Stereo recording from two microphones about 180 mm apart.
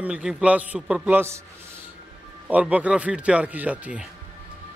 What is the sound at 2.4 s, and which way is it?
A man's voice, 5° right (ahead or behind).